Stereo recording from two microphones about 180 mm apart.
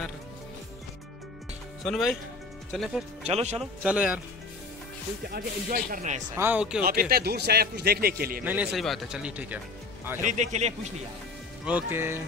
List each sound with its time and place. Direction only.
1.9 s speech: centre (ahead or behind)
3.3 s a man's voice: 35° right (ahead or behind)
3.5 s a man's voice: 5° right (ahead or behind)
5.3 s speech: 50° right (ahead or behind)
6.3 s a man's voice: 10° right (ahead or behind)
6.8 s a man's voice: 55° right (ahead or behind)
8.5 s a man's voice: 10° right (ahead or behind)
10.2 s a man's voice: 40° right (ahead or behind)
11.6 s a man's voice: 10° right (ahead or behind)